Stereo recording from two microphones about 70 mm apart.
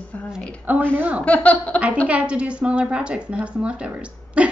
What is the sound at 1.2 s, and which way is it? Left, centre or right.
Speech, centre.